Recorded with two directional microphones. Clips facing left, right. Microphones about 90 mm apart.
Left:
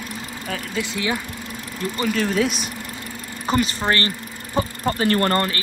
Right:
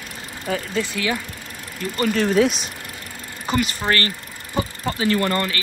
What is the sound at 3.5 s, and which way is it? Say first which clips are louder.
Speech: left 1 dB; 30° left (ahead or behind).